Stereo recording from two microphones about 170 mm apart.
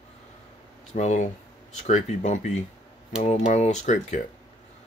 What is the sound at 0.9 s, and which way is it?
Speech, 45° left (ahead or behind).